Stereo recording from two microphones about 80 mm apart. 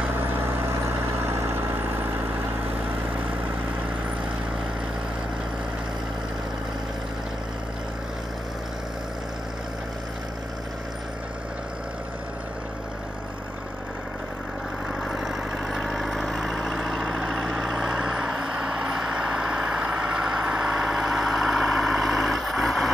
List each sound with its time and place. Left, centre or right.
0.5 s vehicle: right
15.0 s vehicle: centre
20.5 s vehicle: centre